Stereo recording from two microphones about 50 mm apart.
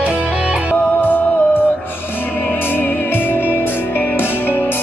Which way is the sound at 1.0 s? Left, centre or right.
Left.